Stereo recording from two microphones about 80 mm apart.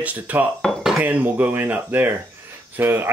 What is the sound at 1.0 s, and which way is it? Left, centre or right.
Speech, right.